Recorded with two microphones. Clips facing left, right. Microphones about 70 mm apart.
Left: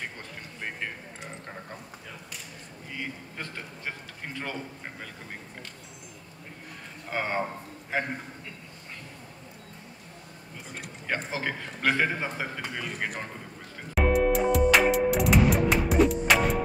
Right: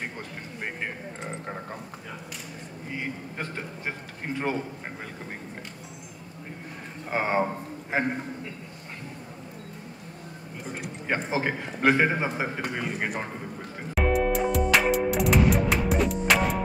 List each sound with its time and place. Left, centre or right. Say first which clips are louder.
2.9 s a man's voice: right 3 dB; right
7.1 s a man's voice: right 4 dB; centre
11.1 s a man's voice: right 4 dB; right
13.9 s music: left 1 dB; centre